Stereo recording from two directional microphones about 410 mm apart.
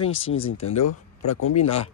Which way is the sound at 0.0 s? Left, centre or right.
Centre.